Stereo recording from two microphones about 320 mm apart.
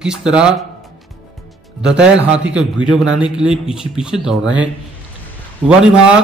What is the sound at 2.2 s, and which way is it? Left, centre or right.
Speech, centre.